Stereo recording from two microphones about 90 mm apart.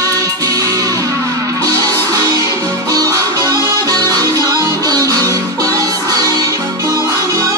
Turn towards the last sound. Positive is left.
turn(degrees=-45)  # may be behind; listen again after turning